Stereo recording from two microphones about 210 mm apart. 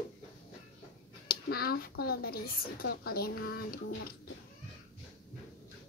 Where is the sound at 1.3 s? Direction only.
45° left (ahead or behind).